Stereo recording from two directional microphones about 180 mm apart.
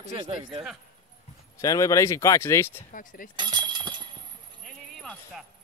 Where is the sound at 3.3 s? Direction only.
25° right (ahead or behind).